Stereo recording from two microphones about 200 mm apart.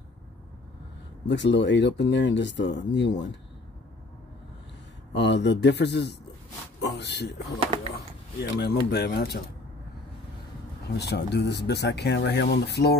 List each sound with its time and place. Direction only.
1.2 s speech: 60° left (ahead or behind)
5.1 s speech: 60° left (ahead or behind)
11.0 s speech: 55° left (ahead or behind)